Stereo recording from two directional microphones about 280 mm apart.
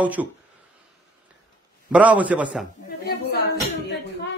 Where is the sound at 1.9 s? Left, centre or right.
Centre.